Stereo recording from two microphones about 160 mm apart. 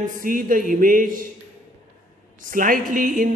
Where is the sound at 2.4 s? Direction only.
60° right (ahead or behind).